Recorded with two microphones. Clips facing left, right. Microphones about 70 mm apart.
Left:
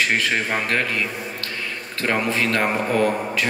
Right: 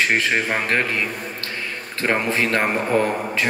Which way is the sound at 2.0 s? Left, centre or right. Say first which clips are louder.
Right 1 dB; right.